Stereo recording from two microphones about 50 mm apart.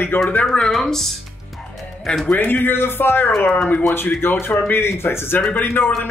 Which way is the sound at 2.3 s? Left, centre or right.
Left.